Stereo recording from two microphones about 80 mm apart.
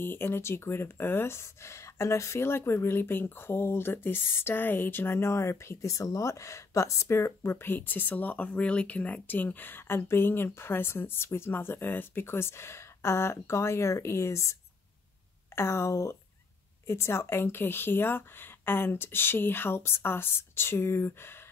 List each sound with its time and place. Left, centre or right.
0.0 s speech: left